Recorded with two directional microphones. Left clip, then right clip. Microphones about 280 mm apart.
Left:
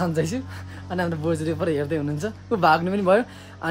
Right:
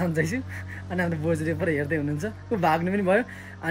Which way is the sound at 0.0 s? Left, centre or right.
Centre.